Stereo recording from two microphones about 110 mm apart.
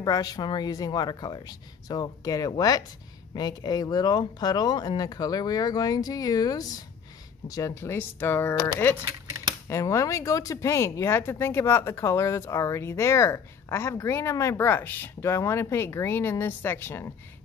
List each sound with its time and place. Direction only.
0.0 s speech: 35° left (ahead or behind); by 8.9 s 20° left (ahead or behind)
9.0 s a sound: 30° right (ahead or behind)
9.7 s speech: 25° left (ahead or behind)